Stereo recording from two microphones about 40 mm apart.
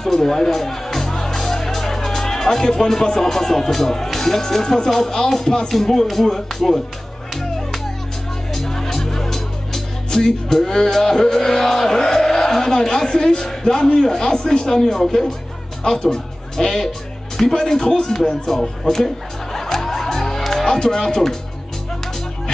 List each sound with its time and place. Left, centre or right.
0.0 s speech: centre
8.5 s music: centre
13.9 s speech: centre
18.0 s music: centre